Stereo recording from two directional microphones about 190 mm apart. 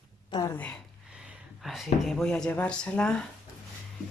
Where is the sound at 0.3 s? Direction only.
20° left (ahead or behind).